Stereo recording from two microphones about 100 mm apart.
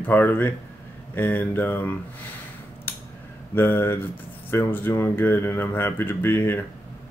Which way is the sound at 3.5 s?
20° left (ahead or behind).